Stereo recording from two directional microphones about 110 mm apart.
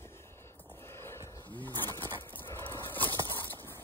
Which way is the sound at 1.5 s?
15° left (ahead or behind).